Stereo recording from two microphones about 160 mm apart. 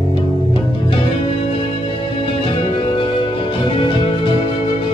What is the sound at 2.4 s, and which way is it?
Music, 35° left (ahead or behind).